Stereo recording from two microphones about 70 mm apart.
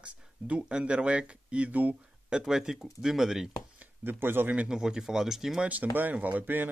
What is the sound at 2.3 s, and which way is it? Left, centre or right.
Speech, centre.